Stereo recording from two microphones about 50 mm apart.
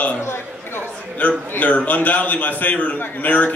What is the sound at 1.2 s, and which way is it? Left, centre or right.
A man's voice, left.